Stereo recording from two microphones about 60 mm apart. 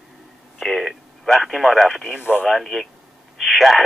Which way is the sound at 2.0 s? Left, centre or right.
Centre.